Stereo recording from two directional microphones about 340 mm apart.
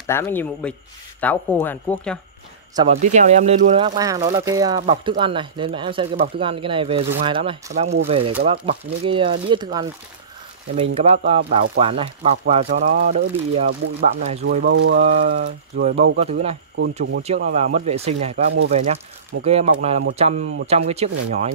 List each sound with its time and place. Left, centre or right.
0.0 s speech: centre
2.7 s speech: centre